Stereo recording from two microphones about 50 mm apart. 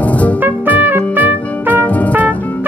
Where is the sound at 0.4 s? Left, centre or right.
Right.